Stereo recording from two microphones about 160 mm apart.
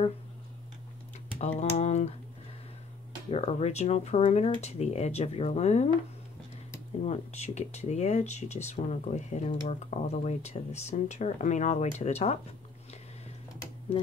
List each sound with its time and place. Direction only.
1.4 s speech: 45° left (ahead or behind)
3.3 s speech: 40° left (ahead or behind)
7.0 s speech: 45° left (ahead or behind)